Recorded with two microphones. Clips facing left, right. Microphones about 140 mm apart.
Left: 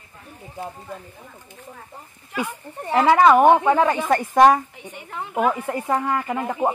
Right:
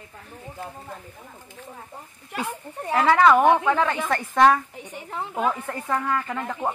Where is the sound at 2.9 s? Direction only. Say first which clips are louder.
Left 3 dB; 10° left (ahead or behind).